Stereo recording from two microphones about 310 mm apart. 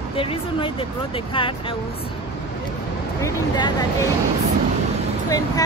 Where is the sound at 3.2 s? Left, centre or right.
Centre.